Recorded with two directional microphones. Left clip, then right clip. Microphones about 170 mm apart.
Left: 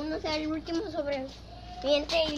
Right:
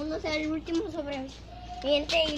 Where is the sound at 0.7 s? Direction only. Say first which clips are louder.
Left 1 dB; 5° left (ahead or behind).